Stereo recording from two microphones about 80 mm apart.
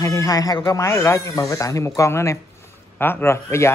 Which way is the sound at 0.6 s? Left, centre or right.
Left.